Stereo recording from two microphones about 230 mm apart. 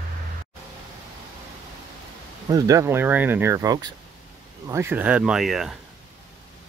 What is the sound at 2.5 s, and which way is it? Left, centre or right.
Speech, centre.